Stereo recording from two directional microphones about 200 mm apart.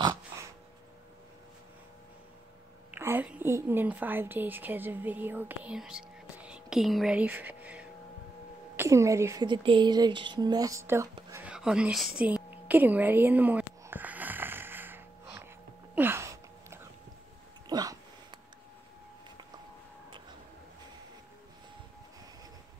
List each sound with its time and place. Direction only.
2.9 s a woman's voice: 10° right (ahead or behind)
11.1 s whispering: 15° right (ahead or behind)
11.4 s a sound: 5° right (ahead or behind)